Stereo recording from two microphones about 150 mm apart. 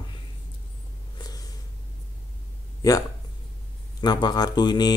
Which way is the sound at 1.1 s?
25° left (ahead or behind).